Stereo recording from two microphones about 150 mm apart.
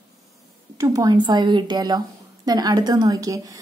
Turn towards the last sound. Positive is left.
turn(degrees=-25)  # may be behind; listen again after turning